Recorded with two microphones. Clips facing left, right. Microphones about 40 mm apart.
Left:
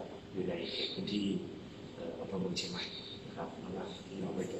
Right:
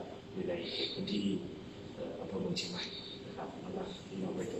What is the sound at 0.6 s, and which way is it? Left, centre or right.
Speech, centre.